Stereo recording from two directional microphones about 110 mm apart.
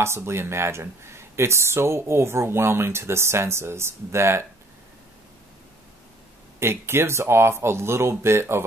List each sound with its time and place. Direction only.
0.0 s speech: 25° right (ahead or behind)
6.6 s speech: 25° right (ahead or behind)